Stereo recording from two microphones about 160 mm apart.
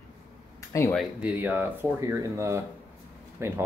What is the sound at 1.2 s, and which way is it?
Speech, 10° right (ahead or behind).